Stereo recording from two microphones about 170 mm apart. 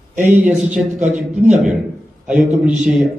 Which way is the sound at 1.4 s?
45° right (ahead or behind).